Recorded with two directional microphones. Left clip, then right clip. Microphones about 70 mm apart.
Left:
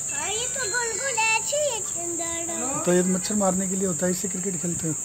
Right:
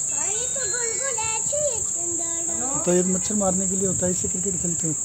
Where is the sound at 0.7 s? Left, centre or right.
Left.